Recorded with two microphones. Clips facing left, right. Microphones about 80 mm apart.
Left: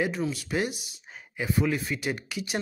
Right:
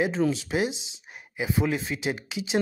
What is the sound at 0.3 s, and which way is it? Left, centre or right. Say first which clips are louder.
Speech: right 3 dB; right.